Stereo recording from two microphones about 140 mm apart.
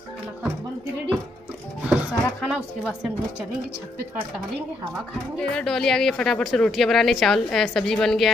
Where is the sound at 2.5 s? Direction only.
5° right (ahead or behind).